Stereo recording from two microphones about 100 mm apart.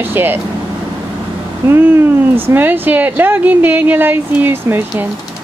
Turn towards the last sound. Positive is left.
turn(degrees=-20)  # may be behind; listen again after turning